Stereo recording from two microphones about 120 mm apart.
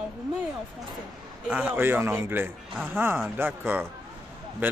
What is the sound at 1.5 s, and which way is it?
Speech, 10° right (ahead or behind).